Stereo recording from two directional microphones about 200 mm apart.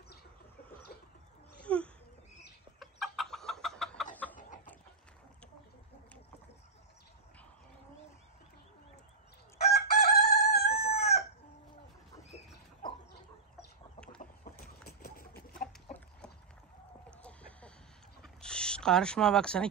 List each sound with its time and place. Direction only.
1.6 s a sound: 5° left (ahead or behind)
2.8 s chicken: centre (ahead or behind)
9.6 s chicken: 50° left (ahead or behind)
13.9 s chicken: 5° left (ahead or behind)
14.2 s boat: 45° left (ahead or behind)
14.9 s chicken: 50° left (ahead or behind)
17.2 s a sound: 5° left (ahead or behind)